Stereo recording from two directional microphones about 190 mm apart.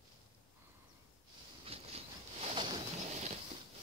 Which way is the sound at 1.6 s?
30° right (ahead or behind).